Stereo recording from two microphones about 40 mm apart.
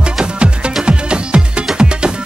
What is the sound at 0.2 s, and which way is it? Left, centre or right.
Music, right.